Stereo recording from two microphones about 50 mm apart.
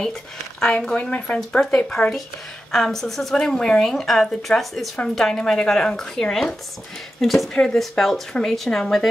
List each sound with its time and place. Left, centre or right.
0.6 s speech: centre
1.1 s speech: left
1.9 s speech: centre
3.8 s a woman's voice: centre
7.5 s speech: centre